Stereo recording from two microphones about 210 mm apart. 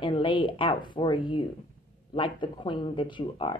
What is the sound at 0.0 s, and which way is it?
Speech, 25° left (ahead or behind).